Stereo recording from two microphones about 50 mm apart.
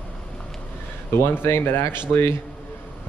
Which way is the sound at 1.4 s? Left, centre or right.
Left.